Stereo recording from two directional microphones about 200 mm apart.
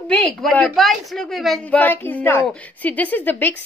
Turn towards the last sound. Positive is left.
turn(degrees=10)  # may be behind; listen again after turning